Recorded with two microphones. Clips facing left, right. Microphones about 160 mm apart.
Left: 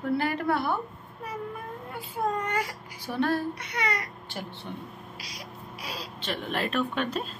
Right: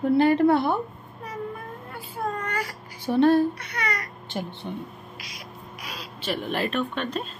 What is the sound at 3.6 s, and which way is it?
Speech, 20° left (ahead or behind).